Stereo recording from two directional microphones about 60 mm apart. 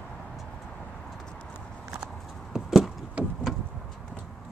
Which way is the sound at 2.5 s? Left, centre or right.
Centre.